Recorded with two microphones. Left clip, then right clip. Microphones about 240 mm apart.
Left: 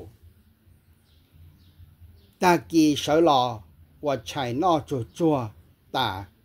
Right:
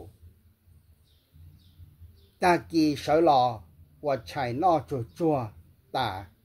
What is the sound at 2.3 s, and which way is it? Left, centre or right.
Speech, left.